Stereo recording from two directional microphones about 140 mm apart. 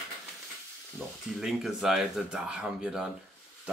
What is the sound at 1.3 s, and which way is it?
Speech, centre (ahead or behind).